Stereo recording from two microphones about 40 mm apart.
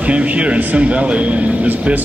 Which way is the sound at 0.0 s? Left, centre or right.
Right.